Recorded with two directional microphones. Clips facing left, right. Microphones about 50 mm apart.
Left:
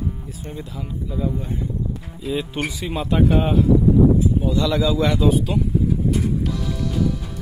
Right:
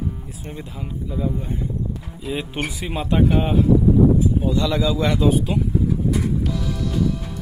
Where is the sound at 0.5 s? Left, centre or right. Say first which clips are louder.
Left 1 dB; centre.